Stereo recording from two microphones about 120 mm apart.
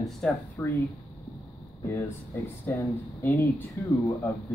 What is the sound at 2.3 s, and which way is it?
Speech, 20° left (ahead or behind).